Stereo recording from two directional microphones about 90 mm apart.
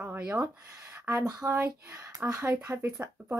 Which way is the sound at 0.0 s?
20° right (ahead or behind).